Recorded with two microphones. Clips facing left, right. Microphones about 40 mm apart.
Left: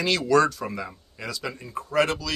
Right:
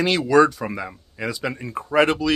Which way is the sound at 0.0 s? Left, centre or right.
Centre.